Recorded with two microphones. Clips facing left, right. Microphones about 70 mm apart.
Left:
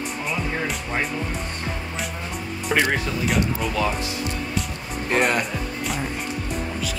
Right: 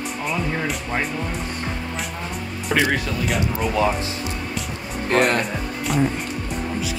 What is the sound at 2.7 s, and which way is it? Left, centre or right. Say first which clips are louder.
Speech: right 1 dB; centre.